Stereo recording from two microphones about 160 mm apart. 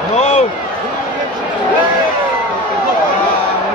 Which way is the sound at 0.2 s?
40° left (ahead or behind).